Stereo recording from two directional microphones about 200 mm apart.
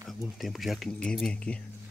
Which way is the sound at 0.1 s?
Centre (ahead or behind).